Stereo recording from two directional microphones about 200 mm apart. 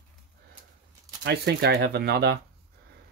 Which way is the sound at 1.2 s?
55° right (ahead or behind).